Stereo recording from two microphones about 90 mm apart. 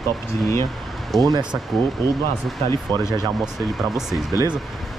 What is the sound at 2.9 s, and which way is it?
Speech, 50° right (ahead or behind).